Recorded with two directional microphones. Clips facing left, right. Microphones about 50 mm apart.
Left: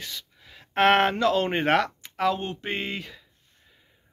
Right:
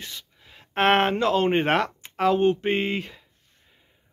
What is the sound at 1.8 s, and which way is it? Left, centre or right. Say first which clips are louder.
Speech: right 3 dB; right.